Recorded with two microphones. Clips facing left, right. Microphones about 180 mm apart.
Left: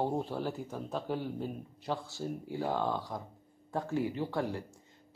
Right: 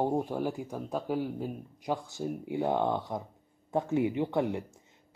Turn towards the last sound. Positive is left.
turn(degrees=-20)  # may be behind; listen again after turning